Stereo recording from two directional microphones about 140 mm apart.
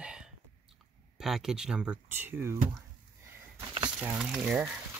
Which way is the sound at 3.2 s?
20° right (ahead or behind).